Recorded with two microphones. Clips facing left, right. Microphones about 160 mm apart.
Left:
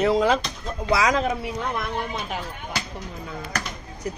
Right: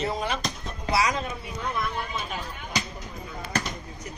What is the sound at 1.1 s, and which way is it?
Speech, 90° left.